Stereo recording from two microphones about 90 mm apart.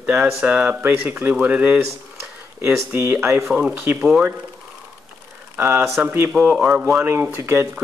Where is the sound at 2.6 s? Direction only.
30° right (ahead or behind).